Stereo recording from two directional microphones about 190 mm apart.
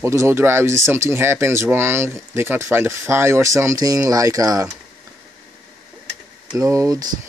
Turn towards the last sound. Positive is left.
turn(degrees=-20)  # may be behind; listen again after turning